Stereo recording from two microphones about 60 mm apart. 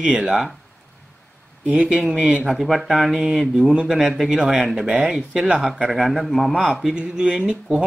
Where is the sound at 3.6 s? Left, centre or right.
Centre.